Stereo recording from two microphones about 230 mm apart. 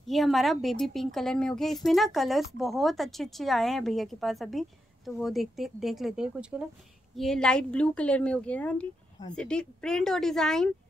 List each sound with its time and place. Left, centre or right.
0.0 s speech: centre